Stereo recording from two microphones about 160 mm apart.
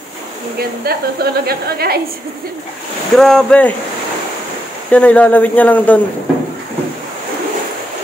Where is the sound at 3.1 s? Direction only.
5° left (ahead or behind).